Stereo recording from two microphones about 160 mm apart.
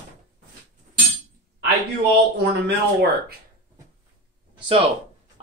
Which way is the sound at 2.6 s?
90° right.